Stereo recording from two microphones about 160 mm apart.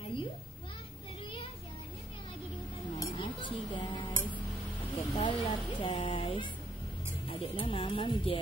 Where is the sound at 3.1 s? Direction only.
30° left (ahead or behind).